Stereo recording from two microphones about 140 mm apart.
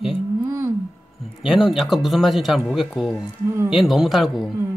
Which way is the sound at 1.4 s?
Centre (ahead or behind).